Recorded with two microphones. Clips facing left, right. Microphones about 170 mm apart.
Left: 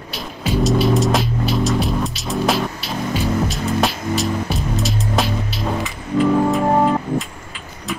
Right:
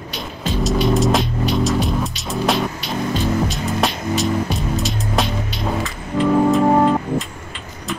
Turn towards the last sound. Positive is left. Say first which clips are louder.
# right 1 dB
turn(degrees=0)  # may be behind; listen again after turning